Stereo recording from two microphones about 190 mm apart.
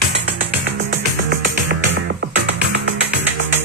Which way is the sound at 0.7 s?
60° right (ahead or behind).